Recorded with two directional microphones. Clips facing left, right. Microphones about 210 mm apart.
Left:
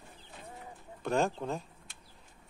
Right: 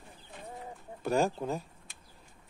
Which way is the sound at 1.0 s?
Centre (ahead or behind).